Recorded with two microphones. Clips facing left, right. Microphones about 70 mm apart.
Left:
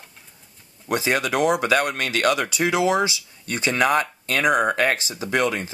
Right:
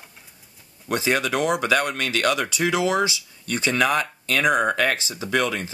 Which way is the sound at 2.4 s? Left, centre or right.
Centre.